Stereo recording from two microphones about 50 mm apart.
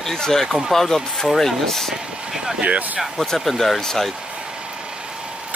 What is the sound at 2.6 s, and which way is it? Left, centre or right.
Speech, right.